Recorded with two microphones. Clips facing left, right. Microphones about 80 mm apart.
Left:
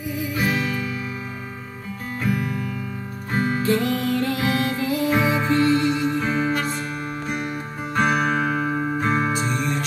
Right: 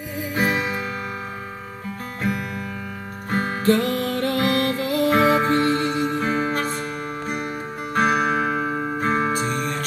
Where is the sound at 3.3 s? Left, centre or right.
Right.